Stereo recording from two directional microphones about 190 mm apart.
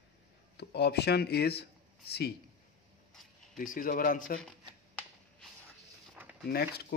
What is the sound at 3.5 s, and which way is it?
Speech, 45° left (ahead or behind).